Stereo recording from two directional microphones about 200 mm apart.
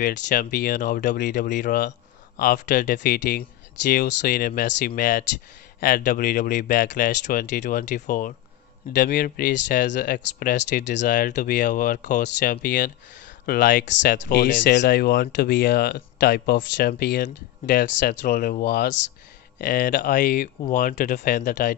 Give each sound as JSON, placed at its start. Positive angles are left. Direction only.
{"t": 0.0, "sound": "speech", "side_deg": 45}
{"t": 11.0, "sound": "speech", "side_deg": 40}
{"t": 13.8, "sound": "speech", "side_deg": 60}